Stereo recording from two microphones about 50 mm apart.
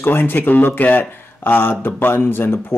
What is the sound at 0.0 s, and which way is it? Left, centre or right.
Speech, left.